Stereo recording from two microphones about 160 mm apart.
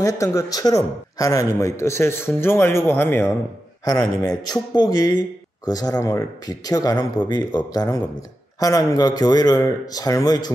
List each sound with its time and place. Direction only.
0.0 s a man's voice: 20° left (ahead or behind)